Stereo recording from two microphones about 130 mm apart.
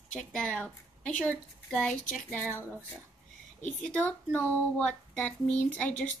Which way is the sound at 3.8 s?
10° left (ahead or behind).